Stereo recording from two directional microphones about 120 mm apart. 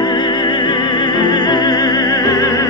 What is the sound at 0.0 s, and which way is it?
Music, 40° left (ahead or behind).